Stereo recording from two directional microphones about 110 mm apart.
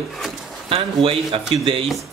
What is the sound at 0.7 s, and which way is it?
A man's voice, 60° right (ahead or behind).